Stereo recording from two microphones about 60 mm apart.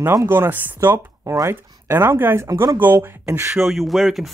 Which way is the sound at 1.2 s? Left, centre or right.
Right.